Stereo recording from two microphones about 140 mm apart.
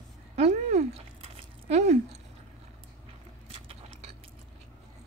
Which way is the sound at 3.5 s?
45° right (ahead or behind).